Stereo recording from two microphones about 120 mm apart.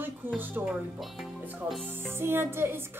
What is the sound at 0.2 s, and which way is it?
Speech, 15° right (ahead or behind).